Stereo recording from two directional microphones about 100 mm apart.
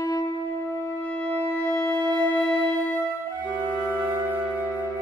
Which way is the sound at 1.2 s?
20° left (ahead or behind).